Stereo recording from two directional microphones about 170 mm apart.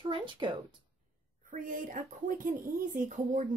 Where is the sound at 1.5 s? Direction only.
50° right (ahead or behind).